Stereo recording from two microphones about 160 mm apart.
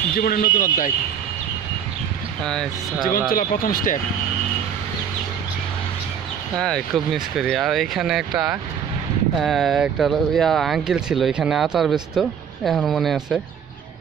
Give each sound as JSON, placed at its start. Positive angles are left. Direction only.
{"t": 0.1, "sound": "speech", "side_deg": 65}
{"t": 2.4, "sound": "speech", "side_deg": 5}
{"t": 3.1, "sound": "speech", "side_deg": 65}
{"t": 6.6, "sound": "speech", "side_deg": 0}